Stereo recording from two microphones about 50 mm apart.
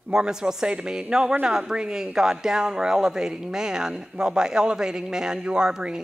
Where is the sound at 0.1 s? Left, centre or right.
Centre.